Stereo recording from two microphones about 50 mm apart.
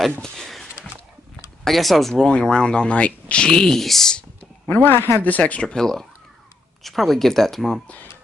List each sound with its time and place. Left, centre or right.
0.2 s a sound: centre
2.2 s speech: centre
4.8 s speech: left
5.2 s speech: left
6.8 s speech: centre